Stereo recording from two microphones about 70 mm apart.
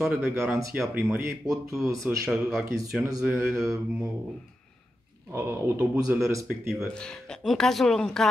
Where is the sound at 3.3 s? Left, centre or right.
Right.